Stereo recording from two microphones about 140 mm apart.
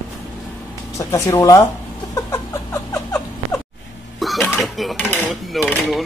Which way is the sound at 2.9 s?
15° left (ahead or behind).